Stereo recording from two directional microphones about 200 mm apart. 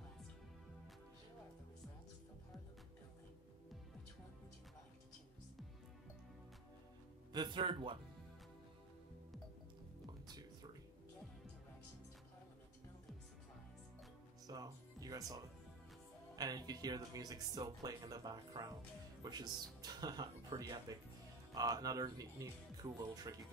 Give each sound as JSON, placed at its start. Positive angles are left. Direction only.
{"t": 7.3, "sound": "speech", "side_deg": -25}
{"t": 10.3, "sound": "a sound", "side_deg": -20}
{"t": 14.5, "sound": "music", "side_deg": -20}
{"t": 16.3, "sound": "speech", "side_deg": -20}